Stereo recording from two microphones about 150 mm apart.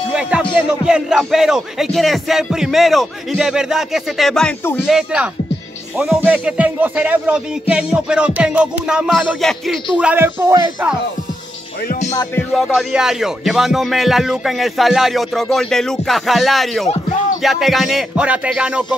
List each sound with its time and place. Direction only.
0.1 s music: 5° right (ahead or behind)
0.6 s speech: 5° right (ahead or behind)
9.9 s speech: 10° right (ahead or behind)
12.1 s music: 20° left (ahead or behind)
12.5 s speech: centre (ahead or behind)